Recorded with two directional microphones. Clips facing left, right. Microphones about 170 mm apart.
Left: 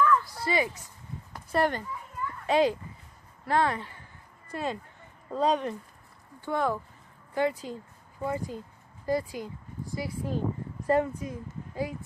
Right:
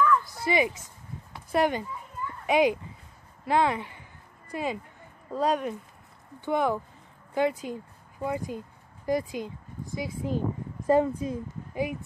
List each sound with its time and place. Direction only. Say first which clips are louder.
0.4 s speech: right 3 dB; 20° right (ahead or behind)
3.4 s a sound: right 2 dB; 15° right (ahead or behind)
5.3 s speech: even; 5° right (ahead or behind)
6.4 s speech: right 3 dB; 20° right (ahead or behind)